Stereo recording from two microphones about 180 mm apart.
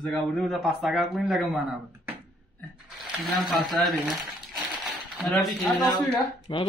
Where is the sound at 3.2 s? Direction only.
Centre (ahead or behind).